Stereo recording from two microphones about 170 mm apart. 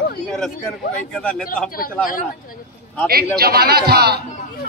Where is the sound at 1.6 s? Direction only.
55° left (ahead or behind).